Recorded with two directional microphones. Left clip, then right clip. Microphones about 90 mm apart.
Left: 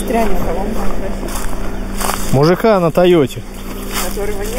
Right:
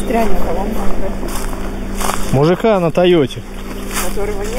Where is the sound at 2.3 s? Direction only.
20° left (ahead or behind).